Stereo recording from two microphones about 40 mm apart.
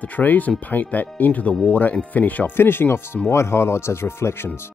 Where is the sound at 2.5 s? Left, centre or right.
Left.